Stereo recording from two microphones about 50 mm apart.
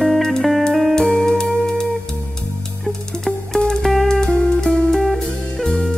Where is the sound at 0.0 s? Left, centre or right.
Centre.